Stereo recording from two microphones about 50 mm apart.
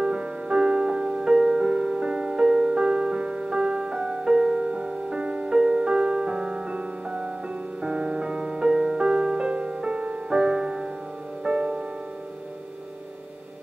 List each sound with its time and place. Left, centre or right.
0.0 s music: centre